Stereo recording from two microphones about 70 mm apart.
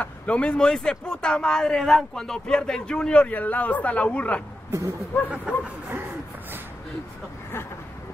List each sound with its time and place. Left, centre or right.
0.0 s speech: centre
4.6 s speech: right
5.5 s speech: centre